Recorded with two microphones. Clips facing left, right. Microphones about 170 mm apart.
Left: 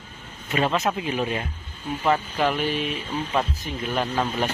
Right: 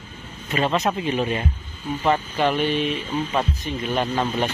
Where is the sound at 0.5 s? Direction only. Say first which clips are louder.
Right 1 dB; centre (ahead or behind).